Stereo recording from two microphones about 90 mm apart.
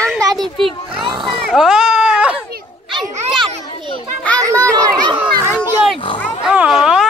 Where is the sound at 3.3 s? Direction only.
65° right (ahead or behind).